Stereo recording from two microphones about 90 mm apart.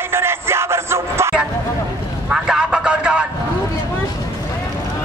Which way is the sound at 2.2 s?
5° right (ahead or behind).